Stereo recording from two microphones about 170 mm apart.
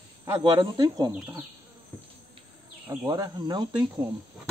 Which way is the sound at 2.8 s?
15° right (ahead or behind).